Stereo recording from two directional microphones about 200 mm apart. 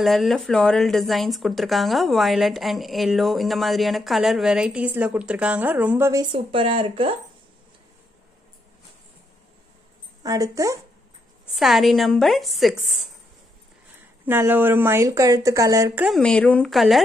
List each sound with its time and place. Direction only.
0.0 s speech: centre (ahead or behind)
6.3 s speech: 25° right (ahead or behind)
10.2 s speech: 15° right (ahead or behind)
11.5 s speech: centre (ahead or behind)
14.2 s speech: 10° right (ahead or behind)
16.2 s speech: 5° left (ahead or behind)